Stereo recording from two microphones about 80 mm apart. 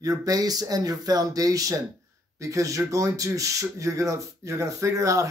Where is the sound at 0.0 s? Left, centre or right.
Right.